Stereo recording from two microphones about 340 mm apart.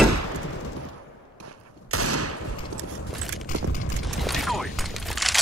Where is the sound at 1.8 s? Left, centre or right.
Right.